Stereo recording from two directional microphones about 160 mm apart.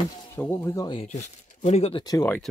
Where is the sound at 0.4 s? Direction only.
10° left (ahead or behind).